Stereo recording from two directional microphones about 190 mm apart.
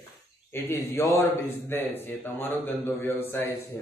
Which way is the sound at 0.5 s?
10° left (ahead or behind).